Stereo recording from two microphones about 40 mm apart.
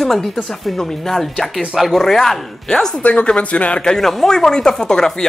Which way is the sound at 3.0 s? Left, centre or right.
Left.